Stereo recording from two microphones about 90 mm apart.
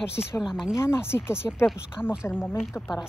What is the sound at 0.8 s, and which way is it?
Speech, 30° left (ahead or behind).